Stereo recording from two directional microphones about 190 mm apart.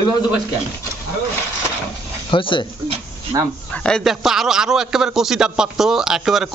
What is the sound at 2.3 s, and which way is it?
Speech, 25° left (ahead or behind).